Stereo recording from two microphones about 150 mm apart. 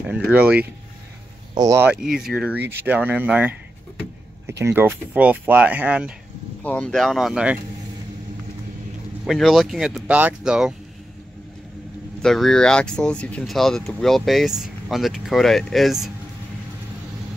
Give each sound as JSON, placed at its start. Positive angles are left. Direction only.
{"t": 0.3, "sound": "speech", "side_deg": -10}
{"t": 1.5, "sound": "speech", "side_deg": -25}
{"t": 1.8, "sound": "speech", "side_deg": -10}
{"t": 6.6, "sound": "speech", "side_deg": 5}
{"t": 9.2, "sound": "speech", "side_deg": 0}
{"t": 12.2, "sound": "speech", "side_deg": 5}